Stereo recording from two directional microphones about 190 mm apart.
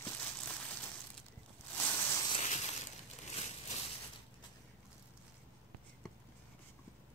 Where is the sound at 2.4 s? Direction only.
35° left (ahead or behind).